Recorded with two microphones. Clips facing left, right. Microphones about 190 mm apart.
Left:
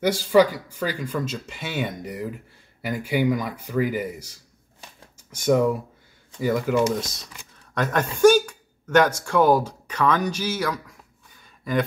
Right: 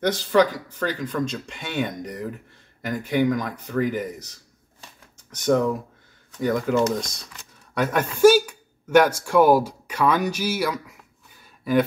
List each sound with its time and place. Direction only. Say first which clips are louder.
0.0 s speech: left 2 dB; 10° left (ahead or behind)
5.3 s speech: left 1 dB; 10° left (ahead or behind)
7.7 s a man's voice: right 1 dB; 10° right (ahead or behind)